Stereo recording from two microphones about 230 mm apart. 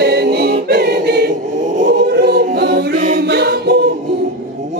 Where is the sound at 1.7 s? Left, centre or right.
Right.